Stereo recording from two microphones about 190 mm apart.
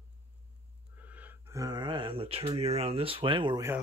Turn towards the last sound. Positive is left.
turn(degrees=-25)  # may be behind; listen again after turning